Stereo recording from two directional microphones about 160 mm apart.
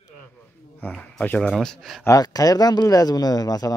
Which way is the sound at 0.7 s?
5° left (ahead or behind).